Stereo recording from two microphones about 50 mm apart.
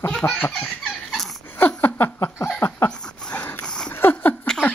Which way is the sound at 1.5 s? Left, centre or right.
Left.